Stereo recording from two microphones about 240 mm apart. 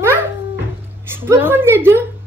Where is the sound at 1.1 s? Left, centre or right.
Centre.